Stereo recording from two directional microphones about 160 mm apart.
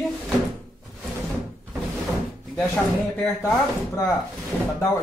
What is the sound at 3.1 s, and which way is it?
Speech, 5° left (ahead or behind).